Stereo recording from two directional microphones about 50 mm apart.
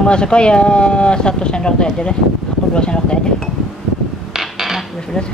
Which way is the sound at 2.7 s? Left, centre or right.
Centre.